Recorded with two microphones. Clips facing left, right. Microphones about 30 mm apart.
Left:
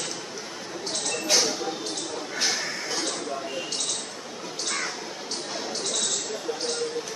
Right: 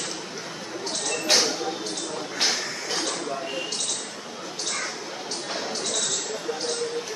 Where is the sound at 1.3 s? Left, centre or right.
Right.